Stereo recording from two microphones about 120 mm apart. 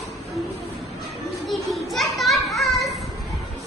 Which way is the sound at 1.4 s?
Centre (ahead or behind).